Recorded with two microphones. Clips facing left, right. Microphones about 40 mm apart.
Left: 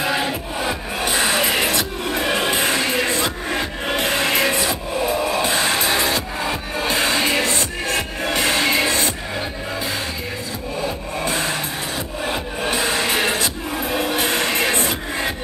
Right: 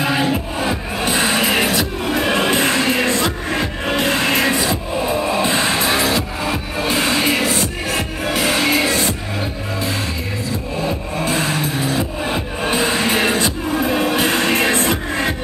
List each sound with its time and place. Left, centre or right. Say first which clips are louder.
0.0 s music: right 3 dB; centre
2.3 s music: right 3 dB; right
6.0 s music: right 2 dB; centre
11.4 s music: right 4 dB; centre
14.1 s vehicle: right 4 dB; centre
14.9 s music: right 4 dB; centre